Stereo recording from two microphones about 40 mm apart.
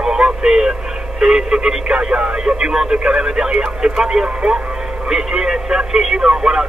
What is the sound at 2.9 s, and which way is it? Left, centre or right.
Speech, right.